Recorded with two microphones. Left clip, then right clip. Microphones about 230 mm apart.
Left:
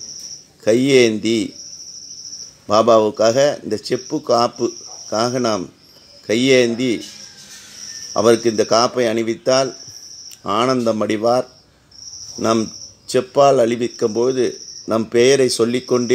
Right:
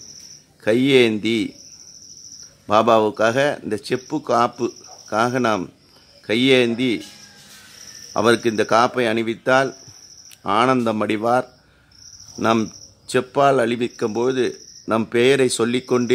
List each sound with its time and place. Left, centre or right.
0.7 s speech: centre
2.6 s speech: centre
8.1 s speech: centre